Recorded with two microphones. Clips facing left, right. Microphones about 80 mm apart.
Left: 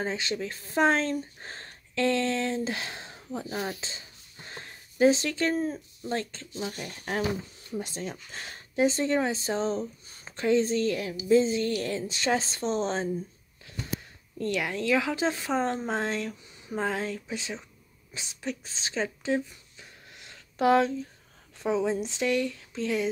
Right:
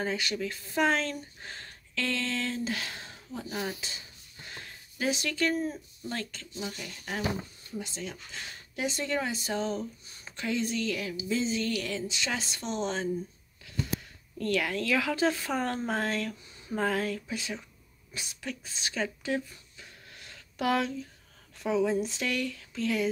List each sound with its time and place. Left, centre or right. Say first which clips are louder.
0.0 s speech: left 1 dB; left
14.4 s speech: even; centre
18.1 s a sound: left 4 dB; left
21.6 s speech: even; left